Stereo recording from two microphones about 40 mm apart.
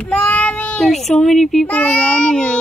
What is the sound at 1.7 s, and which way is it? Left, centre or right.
Speech, left.